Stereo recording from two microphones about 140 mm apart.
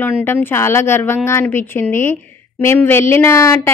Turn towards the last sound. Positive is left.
turn(degrees=20)  # may be behind; listen again after turning